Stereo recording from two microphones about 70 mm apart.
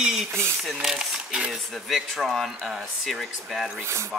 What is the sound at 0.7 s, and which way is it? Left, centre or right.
Speech, centre.